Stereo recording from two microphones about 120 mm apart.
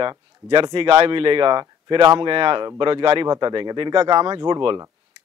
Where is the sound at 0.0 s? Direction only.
40° right (ahead or behind).